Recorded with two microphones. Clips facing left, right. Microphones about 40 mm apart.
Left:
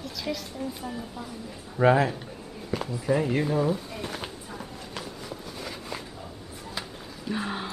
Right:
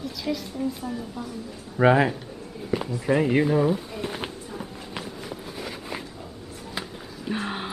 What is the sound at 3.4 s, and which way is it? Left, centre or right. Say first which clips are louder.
Speech: right 4 dB; centre.